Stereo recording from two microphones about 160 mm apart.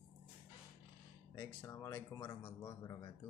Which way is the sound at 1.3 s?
15° left (ahead or behind).